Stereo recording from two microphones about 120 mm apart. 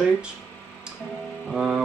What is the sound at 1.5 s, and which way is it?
Speech, 5° right (ahead or behind).